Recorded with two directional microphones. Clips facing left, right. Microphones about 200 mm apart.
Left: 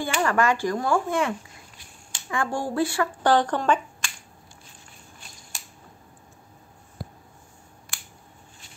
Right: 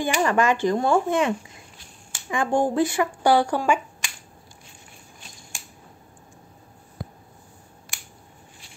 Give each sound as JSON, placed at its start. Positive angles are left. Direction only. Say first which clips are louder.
{"t": 0.0, "sound": "speech", "louder": "right 2 dB", "side_deg": -20}